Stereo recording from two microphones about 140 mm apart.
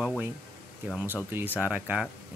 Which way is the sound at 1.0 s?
15° right (ahead or behind).